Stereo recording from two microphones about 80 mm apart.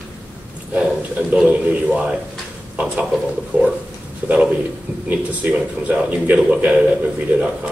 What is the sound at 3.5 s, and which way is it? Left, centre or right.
Speech, centre.